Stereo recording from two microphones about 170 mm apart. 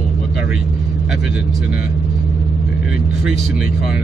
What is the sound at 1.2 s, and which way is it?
Speech, 5° right (ahead or behind).